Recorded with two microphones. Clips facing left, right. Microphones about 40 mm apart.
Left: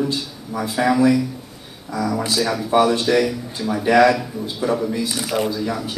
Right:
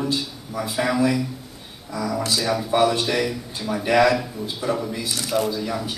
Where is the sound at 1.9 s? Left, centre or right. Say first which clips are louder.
Left 3 dB; centre.